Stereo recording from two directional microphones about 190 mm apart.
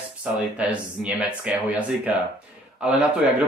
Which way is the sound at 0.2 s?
5° right (ahead or behind).